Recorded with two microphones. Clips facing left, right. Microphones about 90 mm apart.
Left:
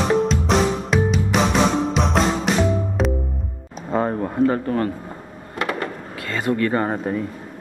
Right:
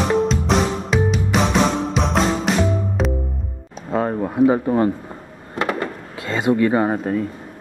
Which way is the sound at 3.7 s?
Centre (ahead or behind).